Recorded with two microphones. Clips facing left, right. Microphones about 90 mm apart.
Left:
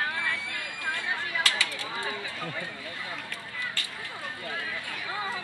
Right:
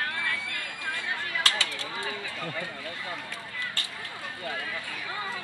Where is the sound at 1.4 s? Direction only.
30° right (ahead or behind).